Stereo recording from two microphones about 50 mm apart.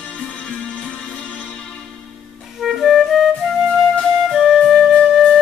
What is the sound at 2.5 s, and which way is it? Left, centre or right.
Music, centre.